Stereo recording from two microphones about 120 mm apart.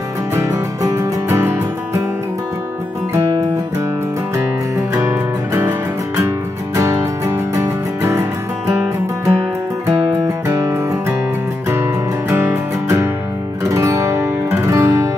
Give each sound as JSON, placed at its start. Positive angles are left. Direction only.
{"t": 0.3, "sound": "music", "side_deg": -25}
{"t": 4.7, "sound": "music", "side_deg": -25}
{"t": 13.7, "sound": "guitar", "side_deg": -25}